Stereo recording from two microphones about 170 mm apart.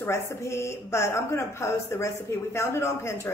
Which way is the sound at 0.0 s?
15° left (ahead or behind).